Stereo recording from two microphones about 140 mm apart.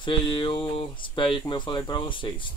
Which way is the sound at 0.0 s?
40° left (ahead or behind).